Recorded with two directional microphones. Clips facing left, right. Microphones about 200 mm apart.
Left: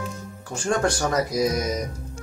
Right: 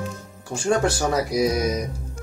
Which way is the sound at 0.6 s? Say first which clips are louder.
Right 2 dB; 5° right (ahead or behind).